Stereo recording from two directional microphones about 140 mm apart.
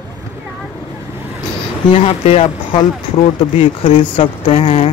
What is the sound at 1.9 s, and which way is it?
Speech, 45° left (ahead or behind).